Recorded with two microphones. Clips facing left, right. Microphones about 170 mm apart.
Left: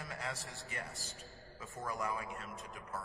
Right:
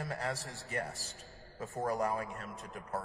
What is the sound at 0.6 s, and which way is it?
A man's voice, 40° right (ahead or behind).